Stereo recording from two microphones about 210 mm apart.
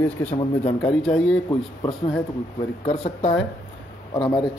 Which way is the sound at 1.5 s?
20° left (ahead or behind).